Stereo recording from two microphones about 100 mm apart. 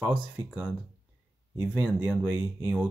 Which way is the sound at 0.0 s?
15° right (ahead or behind).